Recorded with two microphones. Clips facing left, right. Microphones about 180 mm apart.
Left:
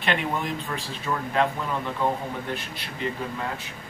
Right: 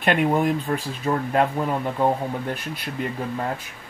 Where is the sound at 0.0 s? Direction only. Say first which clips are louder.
Right 7 dB; 50° right (ahead or behind).